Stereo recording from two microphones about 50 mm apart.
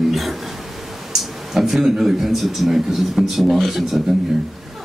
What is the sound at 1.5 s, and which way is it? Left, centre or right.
A man's voice, centre.